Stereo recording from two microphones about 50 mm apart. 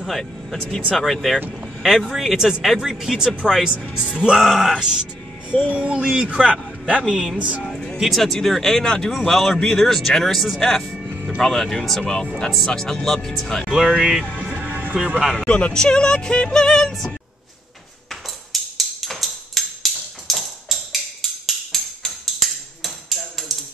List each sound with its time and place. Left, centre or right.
0.0 s speech: centre
3.9 s speech: centre
5.7 s speech: right
7.1 s speech: centre
7.3 s speech: right
7.7 s music: centre
8.0 s speech: centre
13.9 s speech: centre
14.4 s music: right
15.0 s speech: centre
15.3 s speech: left
18.5 s music: centre
21.2 s a sound: centre
23.5 s music: centre